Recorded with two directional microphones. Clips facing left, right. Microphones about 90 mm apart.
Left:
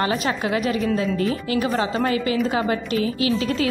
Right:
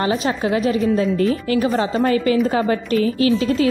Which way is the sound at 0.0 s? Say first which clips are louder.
Right 3 dB; 30° right (ahead or behind).